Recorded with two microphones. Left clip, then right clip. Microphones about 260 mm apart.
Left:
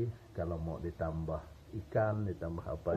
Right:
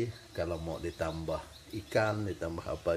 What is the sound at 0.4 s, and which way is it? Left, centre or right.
Speech, right.